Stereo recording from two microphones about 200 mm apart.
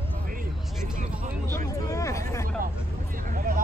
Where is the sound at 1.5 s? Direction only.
15° left (ahead or behind).